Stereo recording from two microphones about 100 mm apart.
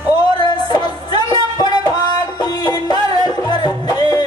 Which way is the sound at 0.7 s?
40° left (ahead or behind).